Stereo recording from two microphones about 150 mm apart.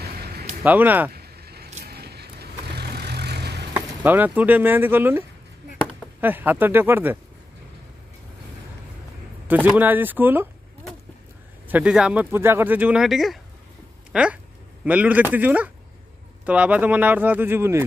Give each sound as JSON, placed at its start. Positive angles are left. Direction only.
{"t": 0.0, "sound": "a sound", "side_deg": -90}
{"t": 0.7, "sound": "speech", "side_deg": -10}
{"t": 1.1, "sound": "vehicle", "side_deg": -90}
{"t": 3.7, "sound": "speech", "side_deg": -10}
{"t": 6.2, "sound": "speech", "side_deg": -10}
{"t": 9.5, "sound": "speech", "side_deg": -10}